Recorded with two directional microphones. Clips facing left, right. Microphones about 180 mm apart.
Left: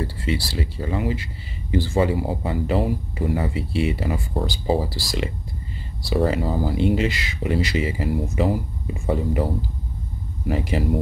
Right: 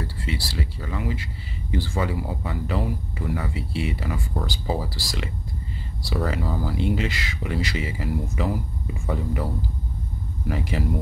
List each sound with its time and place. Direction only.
0.0 s speech: 25° left (ahead or behind)
10.5 s speech: 25° left (ahead or behind)